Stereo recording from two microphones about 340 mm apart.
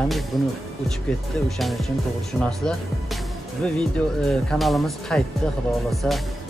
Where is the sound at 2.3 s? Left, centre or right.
Centre.